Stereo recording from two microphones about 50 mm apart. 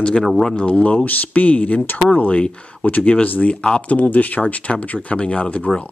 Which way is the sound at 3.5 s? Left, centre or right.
Centre.